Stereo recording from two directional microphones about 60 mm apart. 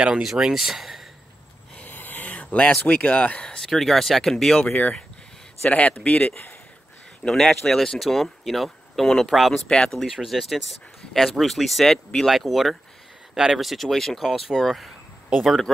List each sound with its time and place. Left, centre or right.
0.0 s speech: centre
1.8 s a sound: left
2.8 s speech: left
5.6 s a man's voice: left
7.2 s speech: centre